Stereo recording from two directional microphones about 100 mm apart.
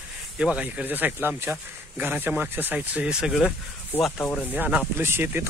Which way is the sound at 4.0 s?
Centre (ahead or behind).